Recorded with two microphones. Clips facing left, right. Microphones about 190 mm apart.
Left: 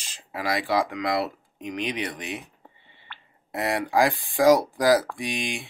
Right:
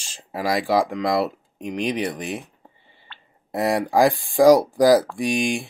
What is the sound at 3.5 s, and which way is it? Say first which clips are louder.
Speech: right 4 dB; 40° right (ahead or behind).